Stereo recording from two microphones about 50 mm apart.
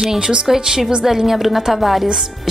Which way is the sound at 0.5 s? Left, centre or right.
Centre.